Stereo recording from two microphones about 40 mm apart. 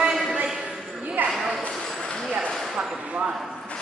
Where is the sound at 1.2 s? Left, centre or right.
Right.